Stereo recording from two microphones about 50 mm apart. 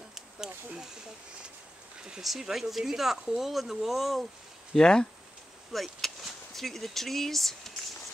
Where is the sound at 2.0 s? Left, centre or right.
Centre.